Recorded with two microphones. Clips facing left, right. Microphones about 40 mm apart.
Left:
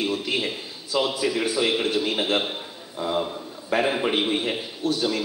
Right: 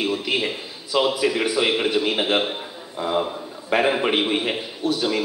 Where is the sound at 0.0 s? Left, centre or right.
Right.